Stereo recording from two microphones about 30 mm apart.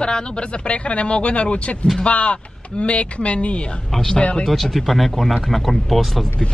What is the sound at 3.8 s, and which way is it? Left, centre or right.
Speech, centre.